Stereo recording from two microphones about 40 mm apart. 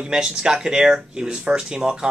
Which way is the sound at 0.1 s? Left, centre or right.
Centre.